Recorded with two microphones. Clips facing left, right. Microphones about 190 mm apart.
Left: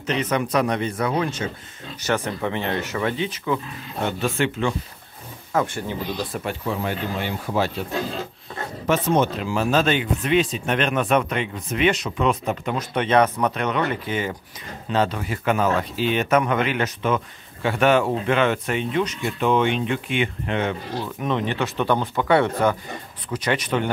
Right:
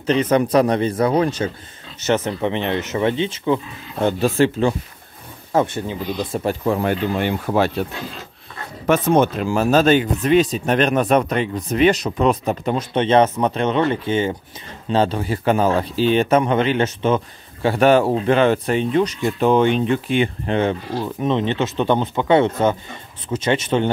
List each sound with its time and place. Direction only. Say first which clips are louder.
0.0 s speech: right 7 dB; 30° right (ahead or behind)
2.0 s speech: right 5 dB; 20° right (ahead or behind)
5.5 s speech: right 4 dB; 25° right (ahead or behind)
6.6 s speech: right 7 dB; 55° right (ahead or behind)
8.8 s speech: right 4 dB; 55° right (ahead or behind); by 20.7 s 35° right (ahead or behind)
21.2 s speech: right 4 dB; 25° right (ahead or behind)